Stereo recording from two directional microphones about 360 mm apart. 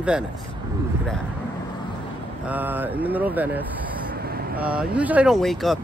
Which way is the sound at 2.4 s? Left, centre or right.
Centre.